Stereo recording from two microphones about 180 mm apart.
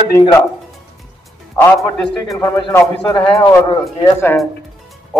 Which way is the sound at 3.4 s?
25° left (ahead or behind).